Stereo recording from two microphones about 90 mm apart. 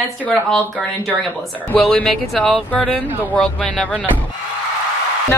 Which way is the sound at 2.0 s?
Centre (ahead or behind).